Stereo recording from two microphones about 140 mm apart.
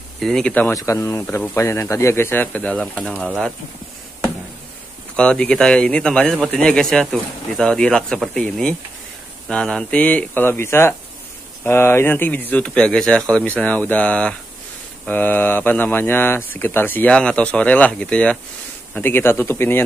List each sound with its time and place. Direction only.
0.2 s speech: 5° left (ahead or behind)
0.7 s speech: 25° left (ahead or behind); by 3.1 s 5° left (ahead or behind)
5.1 s speech: 5° left (ahead or behind)